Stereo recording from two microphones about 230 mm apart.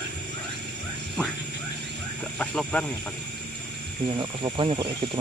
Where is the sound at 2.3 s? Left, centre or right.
Centre.